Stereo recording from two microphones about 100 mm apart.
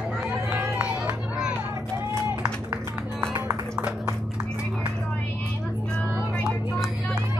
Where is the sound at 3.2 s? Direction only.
30° right (ahead or behind).